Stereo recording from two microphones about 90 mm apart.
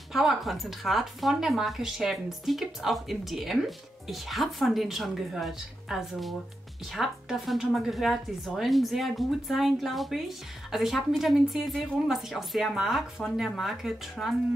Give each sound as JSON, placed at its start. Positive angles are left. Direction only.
{"t": 0.1, "sound": "speech", "side_deg": -5}